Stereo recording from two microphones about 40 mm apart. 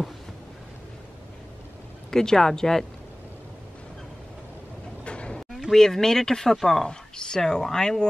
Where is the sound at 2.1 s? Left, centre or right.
Centre.